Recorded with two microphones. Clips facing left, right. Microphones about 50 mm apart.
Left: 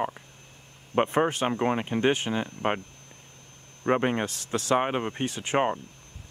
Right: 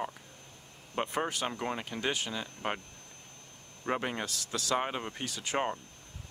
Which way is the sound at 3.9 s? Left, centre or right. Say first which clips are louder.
Left 8 dB; left.